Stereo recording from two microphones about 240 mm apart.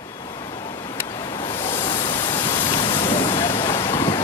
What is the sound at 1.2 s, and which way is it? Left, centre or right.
Pink noise, centre.